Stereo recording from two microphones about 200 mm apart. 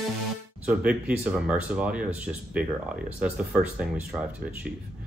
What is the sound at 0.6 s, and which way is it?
A man's voice, 5° right (ahead or behind).